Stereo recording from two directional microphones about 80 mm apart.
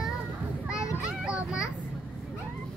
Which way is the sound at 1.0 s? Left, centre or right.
Centre.